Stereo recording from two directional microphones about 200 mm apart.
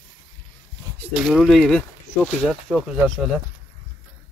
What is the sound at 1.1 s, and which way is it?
Speech, centre (ahead or behind).